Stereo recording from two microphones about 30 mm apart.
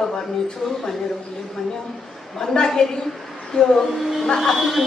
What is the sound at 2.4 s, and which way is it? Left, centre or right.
A woman's voice, left.